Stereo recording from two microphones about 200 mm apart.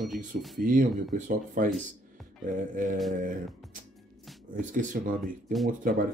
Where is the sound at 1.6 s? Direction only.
40° right (ahead or behind).